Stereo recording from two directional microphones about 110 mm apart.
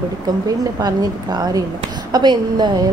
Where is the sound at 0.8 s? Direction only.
35° right (ahead or behind).